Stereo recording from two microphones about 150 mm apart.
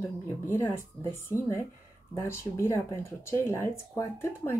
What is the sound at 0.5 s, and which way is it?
Speech, 15° left (ahead or behind).